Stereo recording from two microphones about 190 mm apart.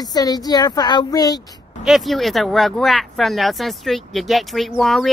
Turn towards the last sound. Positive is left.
turn(degrees=0)  # may be behind; listen again after turning